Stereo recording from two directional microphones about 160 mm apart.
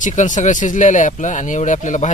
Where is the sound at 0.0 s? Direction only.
50° left (ahead or behind).